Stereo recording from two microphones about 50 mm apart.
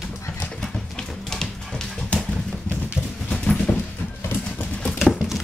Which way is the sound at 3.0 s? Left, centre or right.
Left.